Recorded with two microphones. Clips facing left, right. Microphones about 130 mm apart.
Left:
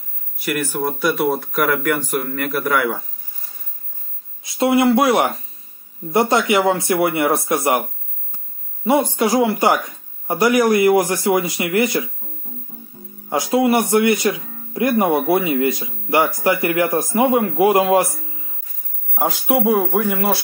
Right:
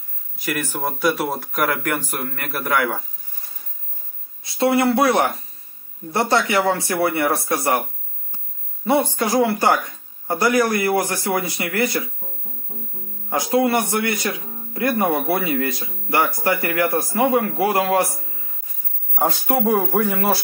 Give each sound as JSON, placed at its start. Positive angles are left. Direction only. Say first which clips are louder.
{"t": 0.4, "sound": "speech", "louder": "left 3 dB", "side_deg": 0}
{"t": 4.4, "sound": "a man's voice", "louder": "left 2 dB", "side_deg": 15}
{"t": 8.8, "sound": "speech", "louder": "left 2 dB", "side_deg": 15}
{"t": 13.3, "sound": "a man's voice", "louder": "left 2 dB", "side_deg": 20}
{"t": 19.1, "sound": "speech", "louder": "left 1 dB", "side_deg": 0}